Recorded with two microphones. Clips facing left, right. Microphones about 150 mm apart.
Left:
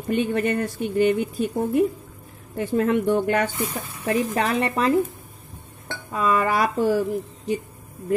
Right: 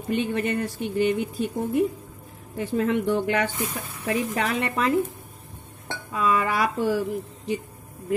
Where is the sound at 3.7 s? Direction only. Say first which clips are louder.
Left 3 dB; 35° left (ahead or behind).